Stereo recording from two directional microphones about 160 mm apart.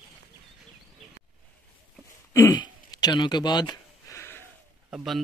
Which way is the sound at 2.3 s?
20° left (ahead or behind).